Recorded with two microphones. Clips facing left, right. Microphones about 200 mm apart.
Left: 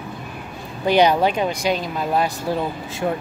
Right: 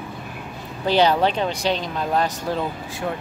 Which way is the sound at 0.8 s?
15° left (ahead or behind).